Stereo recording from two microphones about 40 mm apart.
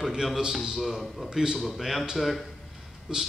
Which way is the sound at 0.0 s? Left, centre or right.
Centre.